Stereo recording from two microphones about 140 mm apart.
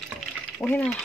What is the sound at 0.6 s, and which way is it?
Speech, 15° left (ahead or behind).